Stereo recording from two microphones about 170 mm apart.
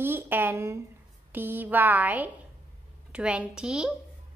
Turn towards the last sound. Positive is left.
turn(degrees=-5)  # may be behind; listen again after turning